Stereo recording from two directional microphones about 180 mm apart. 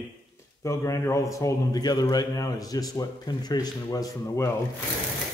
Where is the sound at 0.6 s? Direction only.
15° left (ahead or behind).